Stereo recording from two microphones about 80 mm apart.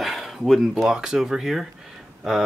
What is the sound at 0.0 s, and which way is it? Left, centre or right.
Speech, centre.